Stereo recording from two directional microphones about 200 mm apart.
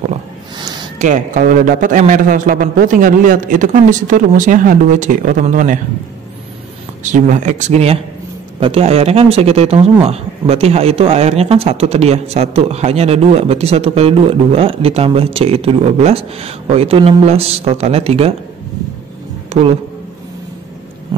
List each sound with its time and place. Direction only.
0.9 s speech: 40° right (ahead or behind)
7.0 s speech: 40° right (ahead or behind)